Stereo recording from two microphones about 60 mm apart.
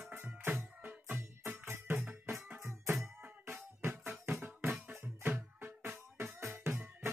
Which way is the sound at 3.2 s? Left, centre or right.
Right.